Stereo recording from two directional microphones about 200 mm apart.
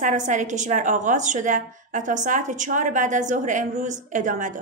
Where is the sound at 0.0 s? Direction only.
40° right (ahead or behind).